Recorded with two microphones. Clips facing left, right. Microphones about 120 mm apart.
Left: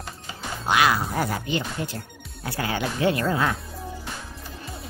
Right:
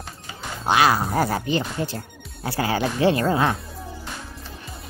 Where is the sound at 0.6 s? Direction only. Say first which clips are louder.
Right 3 dB; 35° right (ahead or behind).